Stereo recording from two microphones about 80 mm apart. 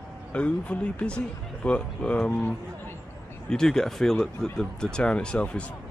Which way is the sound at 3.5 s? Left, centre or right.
Centre.